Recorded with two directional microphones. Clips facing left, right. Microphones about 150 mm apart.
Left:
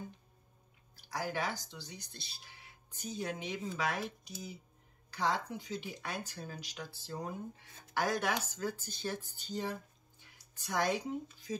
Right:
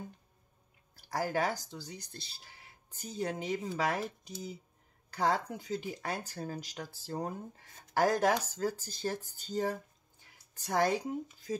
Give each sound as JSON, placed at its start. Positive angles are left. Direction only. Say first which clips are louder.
{"t": 1.0, "sound": "speech", "louder": "right 5 dB", "side_deg": -45}
{"t": 5.1, "sound": "speech", "louder": "right 3 dB", "side_deg": -45}
{"t": 10.2, "sound": "a sound", "louder": "right 3 dB", "side_deg": -40}